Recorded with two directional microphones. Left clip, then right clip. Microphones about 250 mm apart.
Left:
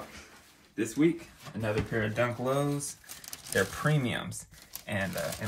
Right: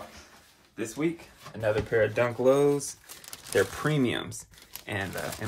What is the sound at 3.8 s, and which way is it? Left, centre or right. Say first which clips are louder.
Speech: right 3 dB; right.